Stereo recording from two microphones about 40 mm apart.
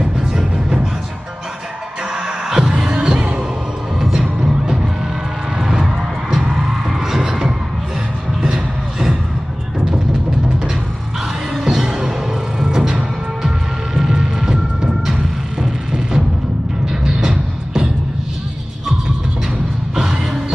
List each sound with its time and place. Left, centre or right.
0.2 s music: centre
2.1 s music: centre
4.0 s music: centre
4.4 s music: centre
11.6 s music: centre
20.0 s music: centre